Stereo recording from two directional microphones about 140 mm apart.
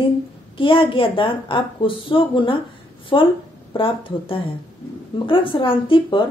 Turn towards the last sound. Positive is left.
turn(degrees=40)  # may be behind; listen again after turning